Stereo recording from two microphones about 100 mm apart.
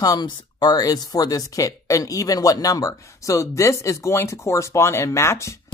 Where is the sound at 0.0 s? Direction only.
40° left (ahead or behind).